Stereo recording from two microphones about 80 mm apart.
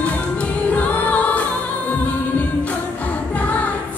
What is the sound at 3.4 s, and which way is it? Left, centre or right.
Music, centre.